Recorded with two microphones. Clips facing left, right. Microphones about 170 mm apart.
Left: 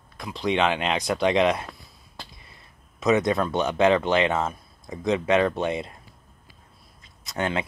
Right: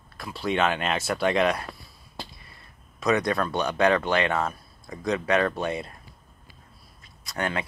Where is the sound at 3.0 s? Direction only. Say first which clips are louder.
Left 3 dB; 20° left (ahead or behind).